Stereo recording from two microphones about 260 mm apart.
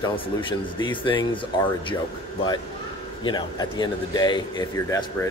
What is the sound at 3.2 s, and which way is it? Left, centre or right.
Speech, centre.